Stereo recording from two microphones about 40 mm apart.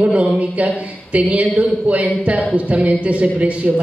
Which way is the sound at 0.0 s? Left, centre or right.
Right.